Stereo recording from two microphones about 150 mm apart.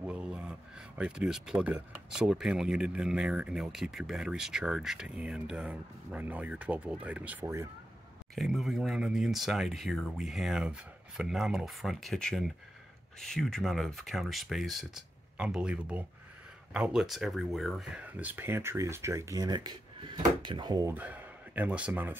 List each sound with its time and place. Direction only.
0.0 s speech: 5° right (ahead or behind)
8.4 s speech: centre (ahead or behind); by 20.9 s 30° right (ahead or behind)
20.9 s speech: 10° right (ahead or behind)